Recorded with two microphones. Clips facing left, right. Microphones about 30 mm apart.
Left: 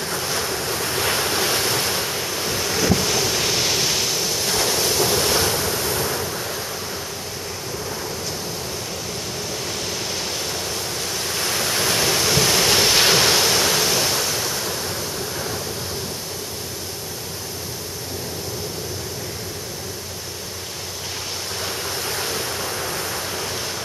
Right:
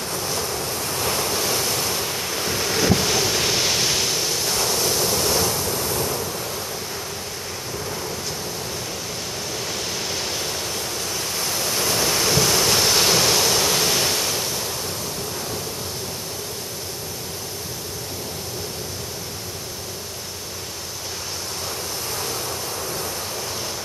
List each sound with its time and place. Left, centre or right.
0.2 s waves: left
2.0 s ocean: centre
4.5 s waves: centre
11.3 s waves: centre
12.2 s ocean: centre
22.1 s vehicle: left